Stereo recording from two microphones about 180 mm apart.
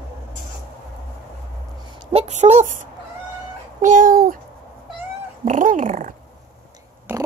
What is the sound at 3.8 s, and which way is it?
Speech, 45° right (ahead or behind).